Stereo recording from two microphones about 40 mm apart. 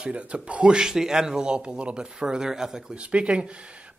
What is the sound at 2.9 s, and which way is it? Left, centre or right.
Speech, right.